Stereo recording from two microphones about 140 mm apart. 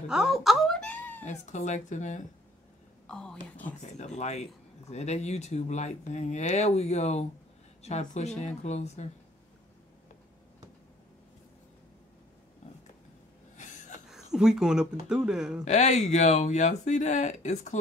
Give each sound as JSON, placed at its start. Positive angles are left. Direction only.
{"t": 0.1, "sound": "wail", "side_deg": -5}
{"t": 1.2, "sound": "speech", "side_deg": 60}
{"t": 3.1, "sound": "speech", "side_deg": 5}
{"t": 4.8, "sound": "speech", "side_deg": 50}
{"t": 13.6, "sound": "a sound", "side_deg": 60}
{"t": 14.0, "sound": "speech", "side_deg": -5}
{"t": 15.6, "sound": "speech", "side_deg": 55}